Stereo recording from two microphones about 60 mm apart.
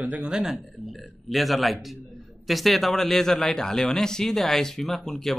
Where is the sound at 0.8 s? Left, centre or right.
Centre.